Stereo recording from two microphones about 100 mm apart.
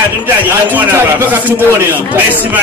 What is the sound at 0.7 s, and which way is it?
Speech, 20° right (ahead or behind).